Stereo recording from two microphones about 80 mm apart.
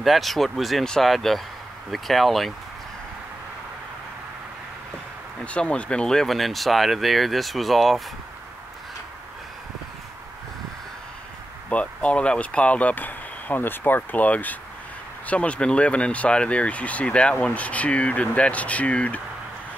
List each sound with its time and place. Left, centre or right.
0.0 s speech: centre
5.4 s speech: centre
11.7 s speech: centre